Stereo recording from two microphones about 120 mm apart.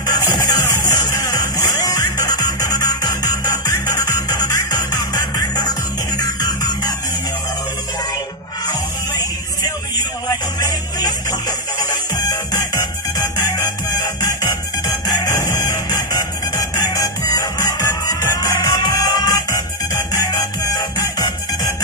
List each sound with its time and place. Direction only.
0.0 s music: 30° left (ahead or behind)
12.2 s music: 25° left (ahead or behind)
15.3 s music: 25° left (ahead or behind)